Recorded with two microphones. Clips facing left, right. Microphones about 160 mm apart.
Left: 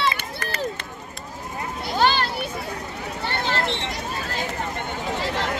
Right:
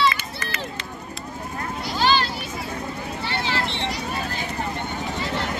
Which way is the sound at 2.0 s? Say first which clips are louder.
Left 1 dB; 60° left (ahead or behind).